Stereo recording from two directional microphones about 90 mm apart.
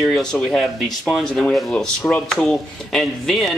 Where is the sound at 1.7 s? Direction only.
10° left (ahead or behind).